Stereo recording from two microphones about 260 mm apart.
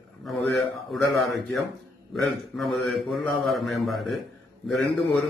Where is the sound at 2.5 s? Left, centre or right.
Centre.